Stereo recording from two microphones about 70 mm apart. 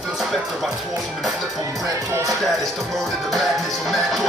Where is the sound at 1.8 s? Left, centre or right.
Right.